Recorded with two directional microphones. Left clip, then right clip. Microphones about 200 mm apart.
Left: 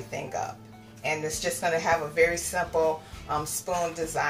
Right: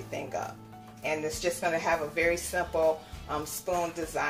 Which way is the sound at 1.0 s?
30° right (ahead or behind).